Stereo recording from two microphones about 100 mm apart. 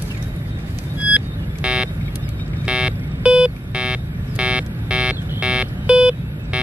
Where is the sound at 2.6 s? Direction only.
10° right (ahead or behind).